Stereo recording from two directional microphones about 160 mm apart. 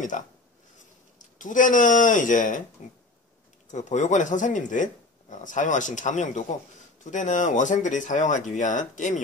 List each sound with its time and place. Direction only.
1.4 s speech: 55° left (ahead or behind)
3.7 s speech: 50° left (ahead or behind)